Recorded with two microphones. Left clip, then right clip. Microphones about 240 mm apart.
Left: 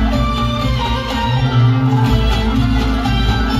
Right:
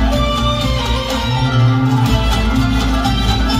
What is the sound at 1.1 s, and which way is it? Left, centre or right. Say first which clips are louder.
Music: even; right.